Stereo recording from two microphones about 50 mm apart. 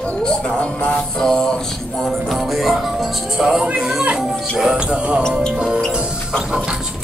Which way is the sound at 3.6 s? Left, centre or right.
Right.